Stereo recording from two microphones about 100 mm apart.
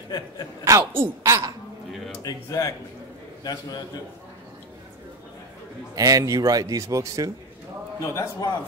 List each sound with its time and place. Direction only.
0.7 s speech: 30° right (ahead or behind)
2.2 s a man's voice: 35° left (ahead or behind)
5.9 s speech: 35° right (ahead or behind)
8.0 s a man's voice: 30° left (ahead or behind)